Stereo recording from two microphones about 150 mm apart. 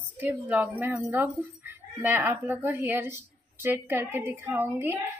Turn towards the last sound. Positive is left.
turn(degrees=-15)  # may be behind; listen again after turning